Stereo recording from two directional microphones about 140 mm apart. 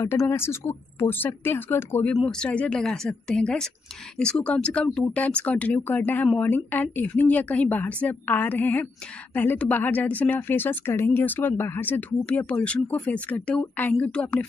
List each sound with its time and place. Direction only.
0.0 s a woman's voice: 15° left (ahead or behind)